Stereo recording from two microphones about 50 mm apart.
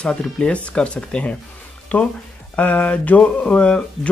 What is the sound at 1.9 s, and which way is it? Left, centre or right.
Speech, left.